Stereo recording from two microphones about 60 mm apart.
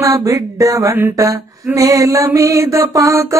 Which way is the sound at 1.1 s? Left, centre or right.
Right.